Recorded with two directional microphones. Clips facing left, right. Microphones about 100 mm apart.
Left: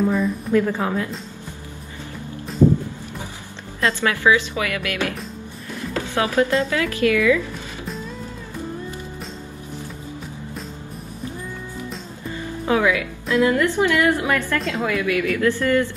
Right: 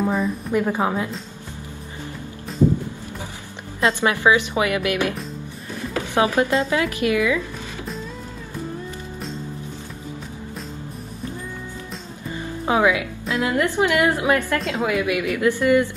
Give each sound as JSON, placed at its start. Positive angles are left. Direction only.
{"t": 0.0, "sound": "a woman's voice", "side_deg": -30}
{"t": 0.5, "sound": "a woman's voice", "side_deg": -20}
{"t": 4.0, "sound": "a woman's voice", "side_deg": -20}
{"t": 12.6, "sound": "a woman's voice", "side_deg": -20}